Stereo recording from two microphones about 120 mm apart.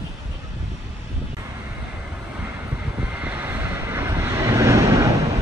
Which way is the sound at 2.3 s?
10° right (ahead or behind).